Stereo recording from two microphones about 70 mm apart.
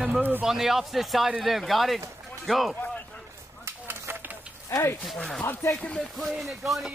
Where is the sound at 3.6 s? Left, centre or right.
Right.